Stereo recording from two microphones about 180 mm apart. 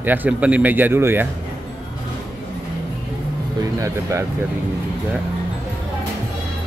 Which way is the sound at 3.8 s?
15° right (ahead or behind).